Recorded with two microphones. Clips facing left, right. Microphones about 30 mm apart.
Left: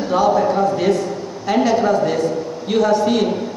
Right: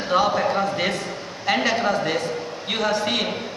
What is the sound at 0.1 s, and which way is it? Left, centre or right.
A woman's voice, right.